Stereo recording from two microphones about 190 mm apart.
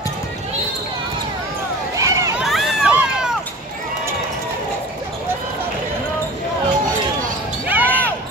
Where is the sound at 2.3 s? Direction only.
Centre (ahead or behind).